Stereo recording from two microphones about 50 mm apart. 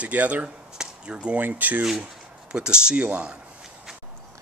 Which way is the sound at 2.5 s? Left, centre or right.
Centre.